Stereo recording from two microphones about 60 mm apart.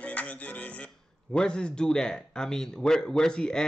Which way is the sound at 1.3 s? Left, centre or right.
Centre.